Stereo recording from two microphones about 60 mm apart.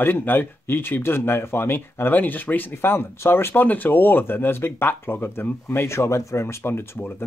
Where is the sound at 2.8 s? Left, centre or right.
Left.